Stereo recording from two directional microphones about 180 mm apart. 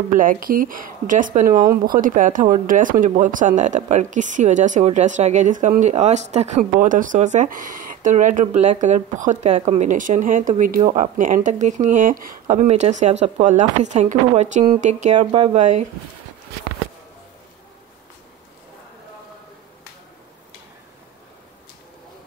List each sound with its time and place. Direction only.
0.1 s speech: 50° right (ahead or behind)
12.6 s speech: 40° right (ahead or behind)